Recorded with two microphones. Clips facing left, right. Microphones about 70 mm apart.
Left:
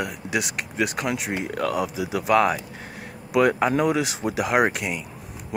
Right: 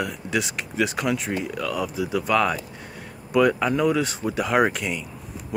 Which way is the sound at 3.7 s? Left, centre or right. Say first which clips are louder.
Even; left.